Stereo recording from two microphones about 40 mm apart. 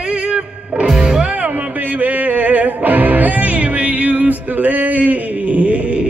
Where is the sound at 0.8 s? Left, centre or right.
Centre.